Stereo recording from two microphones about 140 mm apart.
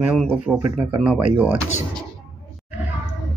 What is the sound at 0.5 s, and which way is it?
Speech, 10° right (ahead or behind).